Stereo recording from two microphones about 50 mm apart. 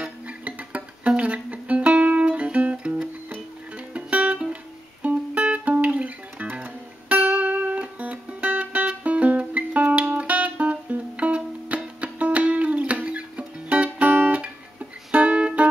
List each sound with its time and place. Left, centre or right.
0.0 s music: right